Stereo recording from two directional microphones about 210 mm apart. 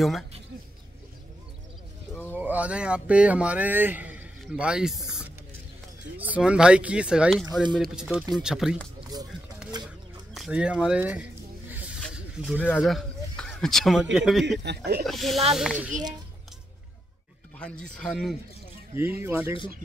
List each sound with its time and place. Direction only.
2.3 s speech: 5° right (ahead or behind)
9.7 s a sound: 20° right (ahead or behind)
10.3 s speech: 5° right (ahead or behind)
12.0 s a sound: 5° left (ahead or behind)
14.1 s speech: centre (ahead or behind)
14.7 s speech: 55° right (ahead or behind)
15.0 s speech: centre (ahead or behind)
17.6 s speech: 5° left (ahead or behind)
18.9 s speech: 10° right (ahead or behind)